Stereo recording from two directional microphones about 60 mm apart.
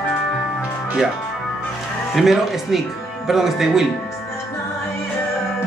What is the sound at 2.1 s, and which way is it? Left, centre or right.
Speech, centre.